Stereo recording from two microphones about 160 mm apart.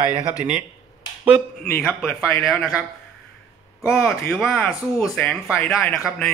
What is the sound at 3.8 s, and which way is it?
A man's voice, centre (ahead or behind).